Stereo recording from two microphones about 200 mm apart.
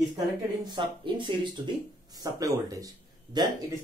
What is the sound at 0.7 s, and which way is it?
A woman's voice, 25° right (ahead or behind).